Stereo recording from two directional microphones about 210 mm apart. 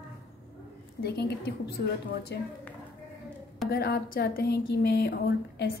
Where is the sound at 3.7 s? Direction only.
50° left (ahead or behind).